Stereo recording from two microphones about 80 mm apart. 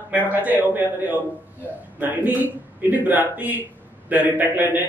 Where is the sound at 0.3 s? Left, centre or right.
Right.